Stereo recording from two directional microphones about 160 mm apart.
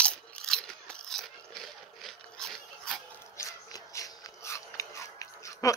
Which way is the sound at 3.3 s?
20° left (ahead or behind).